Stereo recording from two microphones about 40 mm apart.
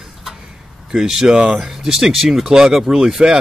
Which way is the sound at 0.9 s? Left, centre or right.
Centre.